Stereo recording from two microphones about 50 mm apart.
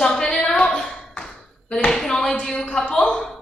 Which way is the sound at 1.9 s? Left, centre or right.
Centre.